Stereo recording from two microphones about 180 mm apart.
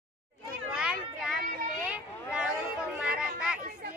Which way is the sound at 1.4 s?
45° right (ahead or behind).